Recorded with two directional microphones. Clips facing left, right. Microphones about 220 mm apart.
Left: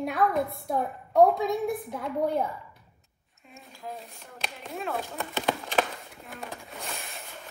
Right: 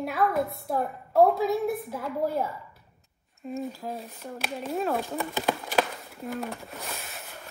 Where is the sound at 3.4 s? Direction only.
40° right (ahead or behind).